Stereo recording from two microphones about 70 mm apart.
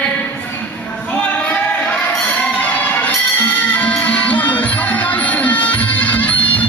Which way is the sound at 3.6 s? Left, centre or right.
Centre.